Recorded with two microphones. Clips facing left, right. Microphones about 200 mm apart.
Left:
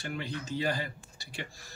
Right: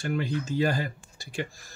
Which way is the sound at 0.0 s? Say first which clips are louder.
Right 8 dB; 45° right (ahead or behind).